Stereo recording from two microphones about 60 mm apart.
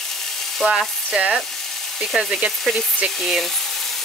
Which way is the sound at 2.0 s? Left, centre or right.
Centre.